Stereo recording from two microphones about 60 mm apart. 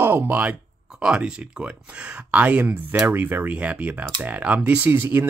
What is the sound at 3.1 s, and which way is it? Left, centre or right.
Speech, right.